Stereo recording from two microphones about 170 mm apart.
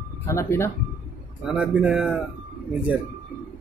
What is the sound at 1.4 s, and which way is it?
Speech, 5° right (ahead or behind).